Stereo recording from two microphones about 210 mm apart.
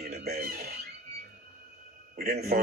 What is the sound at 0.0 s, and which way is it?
Music, 45° right (ahead or behind).